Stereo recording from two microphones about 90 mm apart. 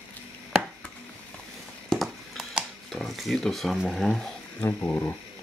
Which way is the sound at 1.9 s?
Centre (ahead or behind).